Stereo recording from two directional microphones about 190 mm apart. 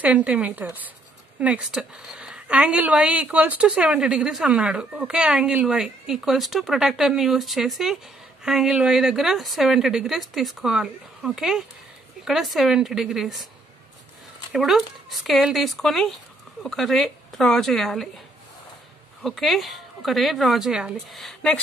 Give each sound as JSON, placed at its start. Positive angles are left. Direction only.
{"t": 0.0, "sound": "a woman's voice", "side_deg": -5}
{"t": 14.5, "sound": "a woman's voice", "side_deg": 0}
{"t": 19.2, "sound": "a woman's voice", "side_deg": 0}